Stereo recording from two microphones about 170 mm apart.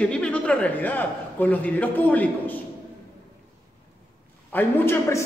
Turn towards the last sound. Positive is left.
turn(degrees=15)  # may be behind; listen again after turning